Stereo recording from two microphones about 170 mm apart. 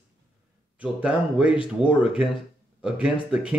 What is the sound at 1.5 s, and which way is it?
Speech, 30° left (ahead or behind).